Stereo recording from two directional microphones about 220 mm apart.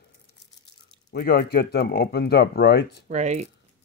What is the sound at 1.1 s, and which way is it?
Speech, 45° left (ahead or behind).